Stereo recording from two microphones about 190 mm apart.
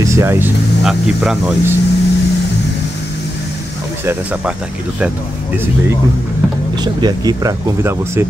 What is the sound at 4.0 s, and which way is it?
Speech, 10° right (ahead or behind).